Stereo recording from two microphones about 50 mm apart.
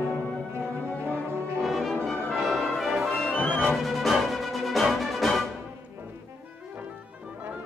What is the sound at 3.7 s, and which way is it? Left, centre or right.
Music, centre.